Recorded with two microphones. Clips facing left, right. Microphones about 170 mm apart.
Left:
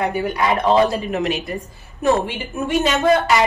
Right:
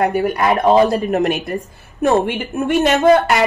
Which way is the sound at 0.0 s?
55° right (ahead or behind).